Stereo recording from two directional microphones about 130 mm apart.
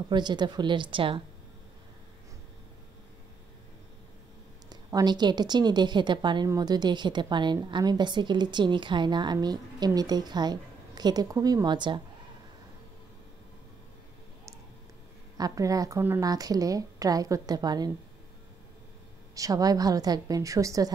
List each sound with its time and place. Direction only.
0.1 s a woman's voice: 35° right (ahead or behind)
4.6 s a woman's voice: 30° right (ahead or behind)
15.3 s a woman's voice: 30° right (ahead or behind)
19.3 s a woman's voice: 25° right (ahead or behind)